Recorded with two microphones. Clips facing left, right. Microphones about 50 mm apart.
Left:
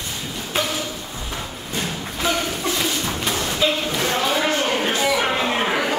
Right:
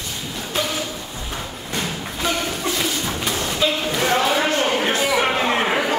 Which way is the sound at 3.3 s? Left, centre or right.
Centre.